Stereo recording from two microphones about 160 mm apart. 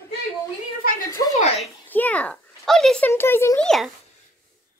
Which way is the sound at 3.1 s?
15° left (ahead or behind).